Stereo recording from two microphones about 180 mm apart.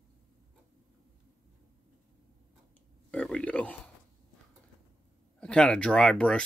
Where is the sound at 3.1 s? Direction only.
5° left (ahead or behind).